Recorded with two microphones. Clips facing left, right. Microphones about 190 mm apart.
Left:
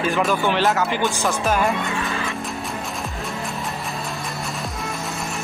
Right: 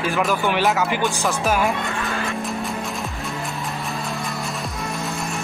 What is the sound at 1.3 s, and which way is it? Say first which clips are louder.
Music: even; 5° right (ahead or behind).